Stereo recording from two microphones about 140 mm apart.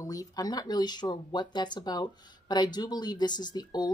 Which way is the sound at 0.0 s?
25° left (ahead or behind).